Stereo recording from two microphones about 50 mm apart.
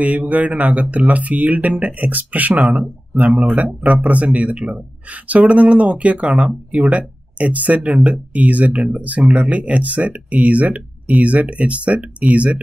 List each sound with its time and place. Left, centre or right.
0.0 s speech: right